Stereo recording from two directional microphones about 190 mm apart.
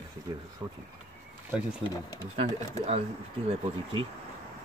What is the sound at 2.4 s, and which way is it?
Speech, 30° right (ahead or behind).